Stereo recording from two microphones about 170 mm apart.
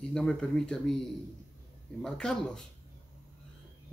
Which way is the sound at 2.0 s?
5° left (ahead or behind).